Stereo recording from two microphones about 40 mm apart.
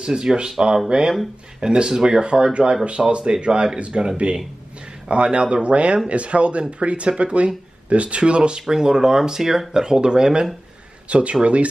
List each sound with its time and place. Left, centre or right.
0.0 s speech: right
8.6 s speech: centre
11.1 s speech: right